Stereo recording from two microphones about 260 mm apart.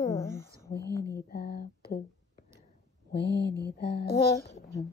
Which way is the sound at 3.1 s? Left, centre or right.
Left.